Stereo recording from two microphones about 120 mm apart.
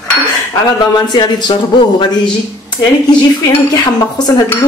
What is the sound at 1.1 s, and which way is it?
Speech, 35° left (ahead or behind).